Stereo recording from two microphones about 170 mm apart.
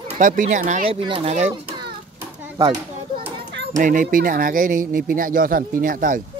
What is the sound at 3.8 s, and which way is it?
Speech, 50° right (ahead or behind).